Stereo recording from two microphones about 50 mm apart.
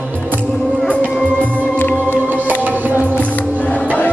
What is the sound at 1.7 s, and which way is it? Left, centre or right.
Music, left.